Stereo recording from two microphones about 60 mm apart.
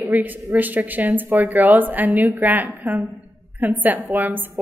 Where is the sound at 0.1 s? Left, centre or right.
Right.